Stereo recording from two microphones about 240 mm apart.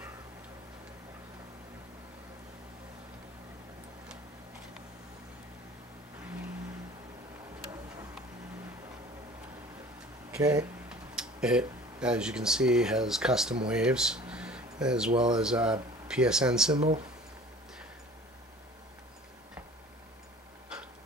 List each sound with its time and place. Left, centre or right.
10.3 s speech: centre
10.9 s speech: centre
16.7 s speech: right
20.7 s a sound: centre